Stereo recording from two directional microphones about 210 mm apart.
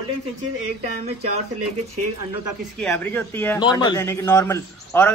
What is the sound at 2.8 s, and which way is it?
Speech, 5° left (ahead or behind).